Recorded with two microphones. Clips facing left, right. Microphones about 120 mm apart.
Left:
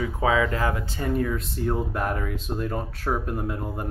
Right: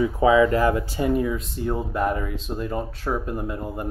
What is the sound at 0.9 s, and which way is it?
Speech, 15° right (ahead or behind).